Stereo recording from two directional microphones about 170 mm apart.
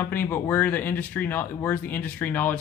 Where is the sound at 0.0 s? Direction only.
10° left (ahead or behind).